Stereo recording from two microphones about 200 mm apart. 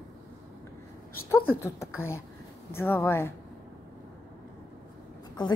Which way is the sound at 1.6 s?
10° left (ahead or behind).